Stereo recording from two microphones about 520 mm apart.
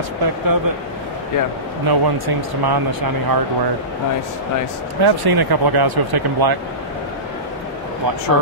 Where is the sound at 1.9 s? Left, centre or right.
Right.